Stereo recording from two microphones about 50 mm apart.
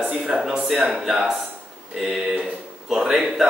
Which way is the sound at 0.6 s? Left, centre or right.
Centre.